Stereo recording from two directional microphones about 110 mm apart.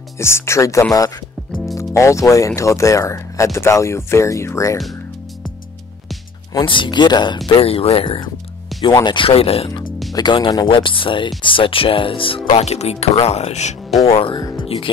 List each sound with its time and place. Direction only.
0.2 s speech: 25° left (ahead or behind)
6.6 s speech: 50° left (ahead or behind)
7.4 s speech: 60° left (ahead or behind)
10.1 s speech: 45° left (ahead or behind)
12.4 s speech: 70° left (ahead or behind); by 13.7 s 90° left
14.0 s speech: 55° left (ahead or behind)
14.6 s music: 50° left (ahead or behind)